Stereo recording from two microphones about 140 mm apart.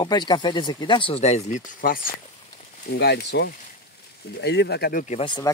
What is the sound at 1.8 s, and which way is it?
Speech, 90° left.